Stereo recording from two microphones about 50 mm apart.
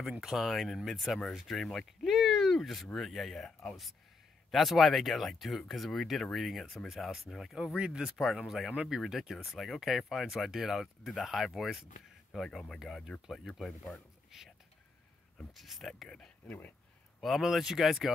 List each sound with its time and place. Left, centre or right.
0.2 s speech: centre
7.7 s speech: centre
8.2 s speech: centre
12.3 s speech: centre
12.7 s speech: centre
14.3 s speech: centre
15.5 s speech: centre
17.2 s speech: centre